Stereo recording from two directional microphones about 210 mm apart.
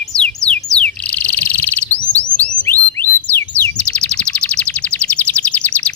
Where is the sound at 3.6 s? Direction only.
5° left (ahead or behind).